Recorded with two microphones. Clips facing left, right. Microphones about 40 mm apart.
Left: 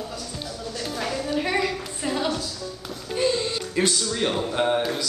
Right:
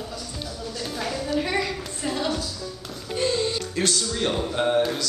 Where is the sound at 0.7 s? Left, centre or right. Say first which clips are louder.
Left 1 dB; centre.